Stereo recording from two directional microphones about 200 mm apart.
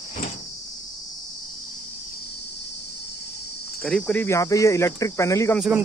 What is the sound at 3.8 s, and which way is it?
Speech, 5° left (ahead or behind).